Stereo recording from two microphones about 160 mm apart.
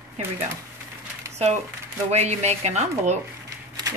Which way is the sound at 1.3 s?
45° right (ahead or behind).